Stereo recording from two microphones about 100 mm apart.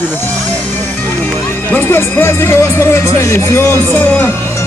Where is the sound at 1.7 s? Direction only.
20° left (ahead or behind).